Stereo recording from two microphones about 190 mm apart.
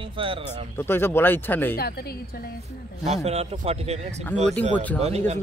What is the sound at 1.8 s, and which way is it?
Speech, 55° left (ahead or behind).